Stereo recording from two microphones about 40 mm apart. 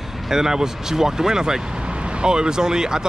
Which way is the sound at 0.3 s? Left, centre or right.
Centre.